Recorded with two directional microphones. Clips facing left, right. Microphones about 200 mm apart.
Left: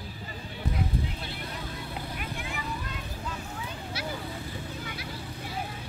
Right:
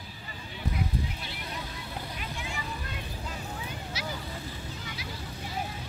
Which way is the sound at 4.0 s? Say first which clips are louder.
Left 2 dB; 55° left (ahead or behind).